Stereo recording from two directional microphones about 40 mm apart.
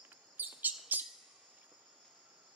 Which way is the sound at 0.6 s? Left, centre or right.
Right.